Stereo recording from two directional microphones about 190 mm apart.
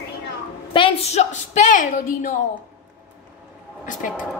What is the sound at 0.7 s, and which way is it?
A woman's voice, 30° left (ahead or behind).